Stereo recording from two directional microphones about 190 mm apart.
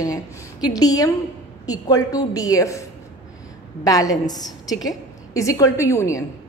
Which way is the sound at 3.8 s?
20° left (ahead or behind).